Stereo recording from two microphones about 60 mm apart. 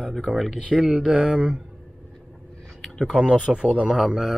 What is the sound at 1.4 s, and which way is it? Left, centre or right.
Speech, right.